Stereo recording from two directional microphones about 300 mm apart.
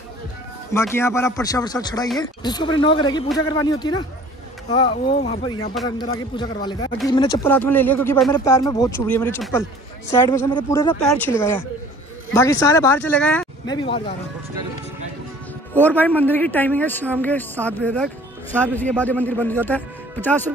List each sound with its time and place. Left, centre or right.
0.7 s speech: centre
15.7 s a man's voice: centre